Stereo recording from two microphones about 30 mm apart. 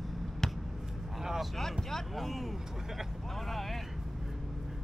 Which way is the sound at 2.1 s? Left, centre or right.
Centre.